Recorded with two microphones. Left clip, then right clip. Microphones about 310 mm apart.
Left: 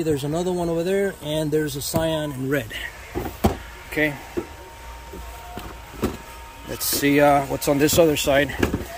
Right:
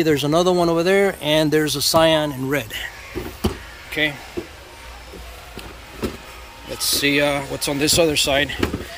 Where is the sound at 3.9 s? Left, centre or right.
Centre.